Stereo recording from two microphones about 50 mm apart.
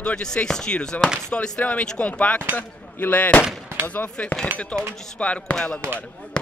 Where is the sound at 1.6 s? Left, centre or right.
Left.